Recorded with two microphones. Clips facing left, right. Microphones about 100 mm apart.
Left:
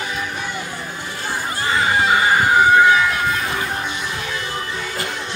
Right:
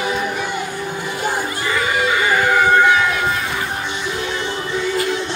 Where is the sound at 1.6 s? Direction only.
30° left (ahead or behind).